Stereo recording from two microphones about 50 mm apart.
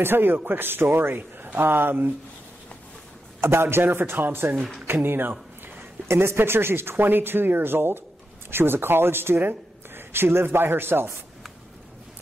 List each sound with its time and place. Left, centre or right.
0.0 s speech: right
3.3 s speech: right
6.0 s speech: right